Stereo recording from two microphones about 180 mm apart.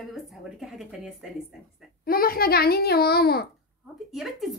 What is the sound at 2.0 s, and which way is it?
A child's voice, 55° left (ahead or behind).